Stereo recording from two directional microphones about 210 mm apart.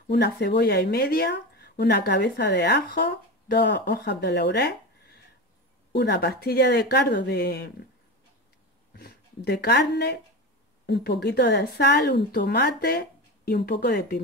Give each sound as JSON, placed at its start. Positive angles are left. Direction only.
{"t": 0.1, "sound": "speech", "side_deg": 55}
{"t": 5.9, "sound": "speech", "side_deg": 55}
{"t": 8.9, "sound": "speech", "side_deg": 50}